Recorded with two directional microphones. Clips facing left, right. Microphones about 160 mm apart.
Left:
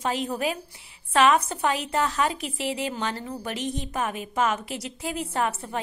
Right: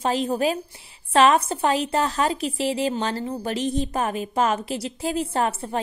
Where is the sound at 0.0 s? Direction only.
30° right (ahead or behind).